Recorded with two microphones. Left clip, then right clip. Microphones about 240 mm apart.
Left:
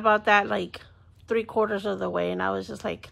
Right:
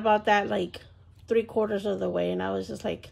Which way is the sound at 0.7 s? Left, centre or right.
Centre.